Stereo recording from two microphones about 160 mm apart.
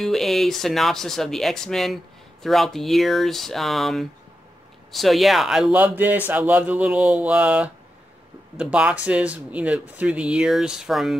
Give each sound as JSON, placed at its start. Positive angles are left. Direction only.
{"t": 0.0, "sound": "speech", "side_deg": 0}